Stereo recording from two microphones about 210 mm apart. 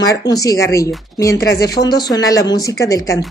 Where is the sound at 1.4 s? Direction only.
50° left (ahead or behind).